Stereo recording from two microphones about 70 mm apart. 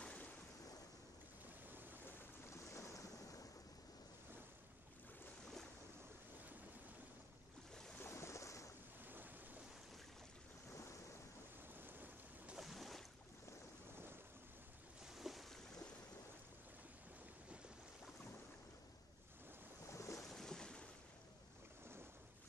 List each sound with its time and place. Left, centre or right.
0.0 s waves: centre
2.0 s boat: left
8.0 s waves: left
9.0 s waves: right
10.7 s waves: left
11.7 s a sound: right
12.5 s boat: centre
15.0 s boat: centre
19.9 s boat: left
20.2 s boat: centre